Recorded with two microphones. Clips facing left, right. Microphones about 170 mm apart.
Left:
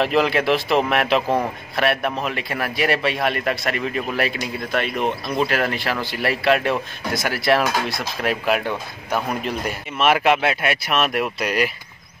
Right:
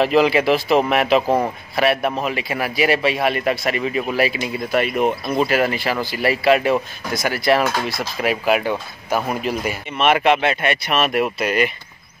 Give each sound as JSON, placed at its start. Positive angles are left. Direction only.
{"t": 0.0, "sound": "speech", "side_deg": 0}